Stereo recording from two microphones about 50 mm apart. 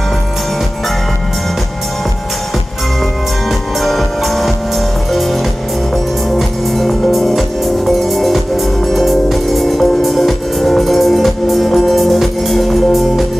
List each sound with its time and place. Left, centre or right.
3.8 s music: centre
6.3 s music: centre